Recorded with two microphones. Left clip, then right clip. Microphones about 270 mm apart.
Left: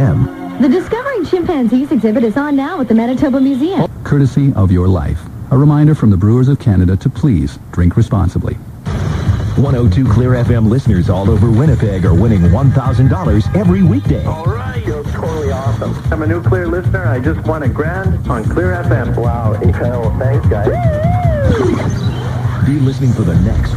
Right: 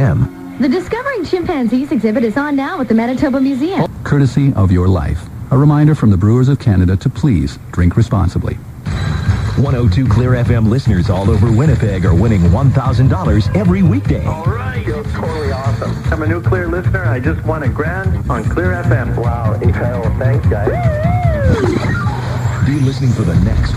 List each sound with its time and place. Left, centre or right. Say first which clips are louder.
0.6 s speech: left 3 dB; left
9.6 s speech: left 3 dB; left
16.2 s speech: left 2 dB; left